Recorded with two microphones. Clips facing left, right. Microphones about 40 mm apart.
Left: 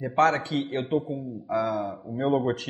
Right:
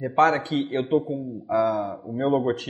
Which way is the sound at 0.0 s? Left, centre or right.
Centre.